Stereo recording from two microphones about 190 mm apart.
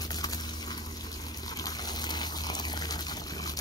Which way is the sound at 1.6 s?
20° left (ahead or behind).